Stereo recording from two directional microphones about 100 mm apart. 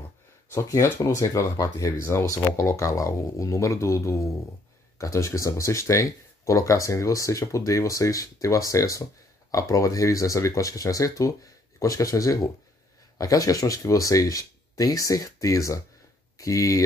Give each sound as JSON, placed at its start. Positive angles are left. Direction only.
{"t": 0.5, "sound": "speech", "side_deg": 30}